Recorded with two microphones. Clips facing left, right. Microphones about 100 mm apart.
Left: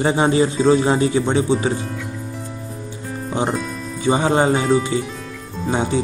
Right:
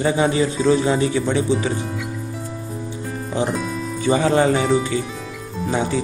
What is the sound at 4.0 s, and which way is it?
Speech, 25° left (ahead or behind).